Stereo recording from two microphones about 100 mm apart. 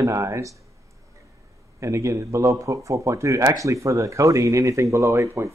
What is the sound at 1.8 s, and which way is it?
Speech, 30° right (ahead or behind).